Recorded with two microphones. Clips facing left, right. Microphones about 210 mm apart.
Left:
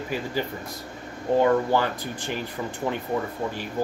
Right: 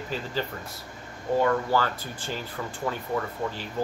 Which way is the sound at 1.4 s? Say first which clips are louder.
Left 3 dB; 20° left (ahead or behind).